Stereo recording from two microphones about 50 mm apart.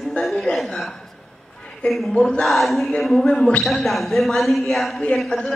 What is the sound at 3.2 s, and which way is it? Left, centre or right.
Speech, centre.